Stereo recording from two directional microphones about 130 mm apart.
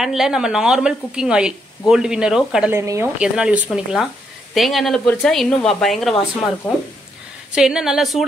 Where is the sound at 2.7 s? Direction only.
20° right (ahead or behind).